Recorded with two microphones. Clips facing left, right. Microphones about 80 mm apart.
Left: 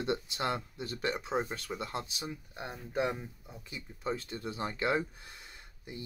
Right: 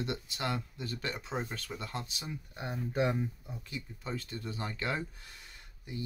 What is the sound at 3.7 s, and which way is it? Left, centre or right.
Speech, left.